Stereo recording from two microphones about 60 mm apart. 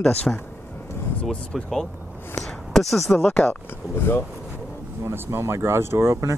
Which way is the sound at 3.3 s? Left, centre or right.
Centre.